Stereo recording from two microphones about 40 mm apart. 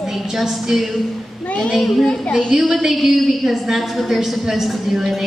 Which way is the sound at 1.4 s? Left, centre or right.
Left.